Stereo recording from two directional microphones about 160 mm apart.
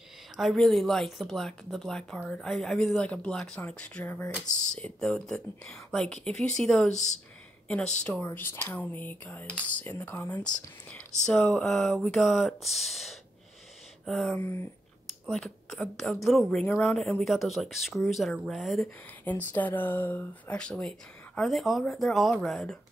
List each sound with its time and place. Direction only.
0.4 s speech: centre (ahead or behind)
6.9 s speech: 45° left (ahead or behind)
7.6 s speech: 5° left (ahead or behind)
15.2 s speech: centre (ahead or behind)
19.2 s speech: 10° left (ahead or behind)